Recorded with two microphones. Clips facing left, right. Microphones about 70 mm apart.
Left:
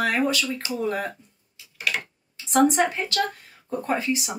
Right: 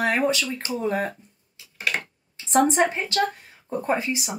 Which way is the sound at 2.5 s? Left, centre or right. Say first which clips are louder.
Even; right.